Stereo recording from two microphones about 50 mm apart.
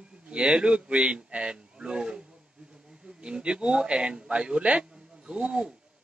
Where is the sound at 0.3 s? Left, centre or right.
Centre.